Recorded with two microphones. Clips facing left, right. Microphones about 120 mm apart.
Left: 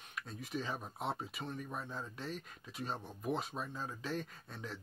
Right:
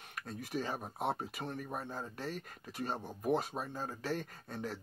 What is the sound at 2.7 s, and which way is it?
Speech, 5° right (ahead or behind).